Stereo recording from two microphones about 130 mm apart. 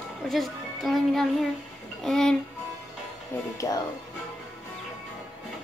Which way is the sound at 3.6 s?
25° left (ahead or behind).